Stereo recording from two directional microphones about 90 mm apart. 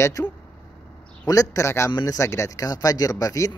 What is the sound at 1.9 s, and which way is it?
Speech, 55° left (ahead or behind).